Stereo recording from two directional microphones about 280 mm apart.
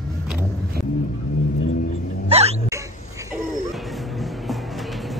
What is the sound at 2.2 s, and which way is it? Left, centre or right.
Hiccup, right.